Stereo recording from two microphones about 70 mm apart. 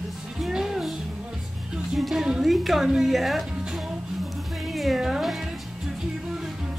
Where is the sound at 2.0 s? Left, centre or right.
Centre.